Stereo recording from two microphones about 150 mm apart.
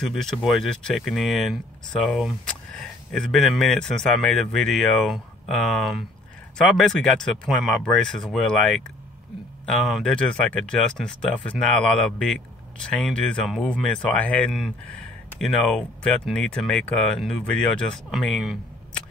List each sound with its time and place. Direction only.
0.0 s speech: 5° left (ahead or behind)